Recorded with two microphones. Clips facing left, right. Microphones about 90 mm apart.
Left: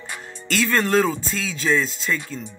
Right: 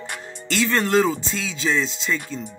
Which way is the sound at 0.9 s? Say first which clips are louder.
Right 1 dB; 10° right (ahead or behind).